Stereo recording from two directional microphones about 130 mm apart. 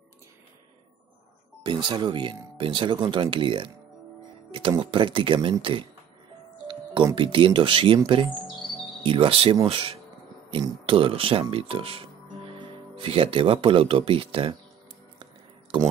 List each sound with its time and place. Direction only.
1.6 s speech: 35° right (ahead or behind)
6.7 s music: 40° right (ahead or behind)
7.2 s speech: 40° right (ahead or behind)
9.0 s speech: 45° right (ahead or behind)
15.7 s speech: 40° right (ahead or behind)